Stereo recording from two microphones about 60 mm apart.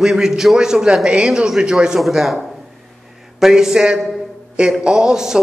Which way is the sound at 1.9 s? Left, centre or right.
Centre.